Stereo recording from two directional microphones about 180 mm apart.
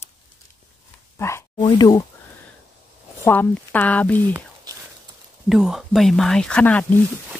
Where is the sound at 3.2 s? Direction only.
10° left (ahead or behind).